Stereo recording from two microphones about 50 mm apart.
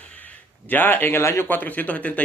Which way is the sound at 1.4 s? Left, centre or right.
Left.